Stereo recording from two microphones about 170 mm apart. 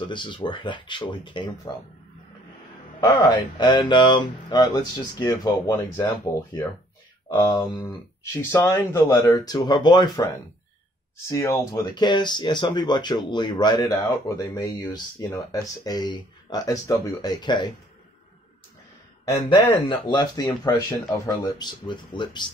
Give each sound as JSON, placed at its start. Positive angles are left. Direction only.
{"t": 0.1, "sound": "speech", "side_deg": 30}
{"t": 3.0, "sound": "speech", "side_deg": 25}
{"t": 11.2, "sound": "speech", "side_deg": 15}
{"t": 19.5, "sound": "speech", "side_deg": 25}